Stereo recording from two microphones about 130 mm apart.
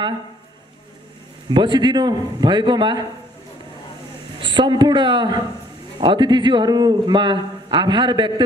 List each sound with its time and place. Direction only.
1.5 s speech: 35° right (ahead or behind)
4.4 s a woman's voice: 40° right (ahead or behind)